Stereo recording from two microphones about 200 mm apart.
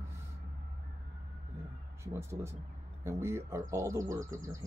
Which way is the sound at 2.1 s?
15° right (ahead or behind).